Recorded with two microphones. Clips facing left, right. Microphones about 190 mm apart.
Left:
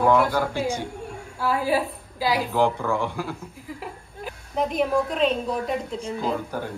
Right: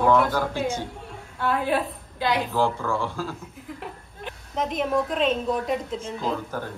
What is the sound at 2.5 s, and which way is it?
Speech, 15° left (ahead or behind).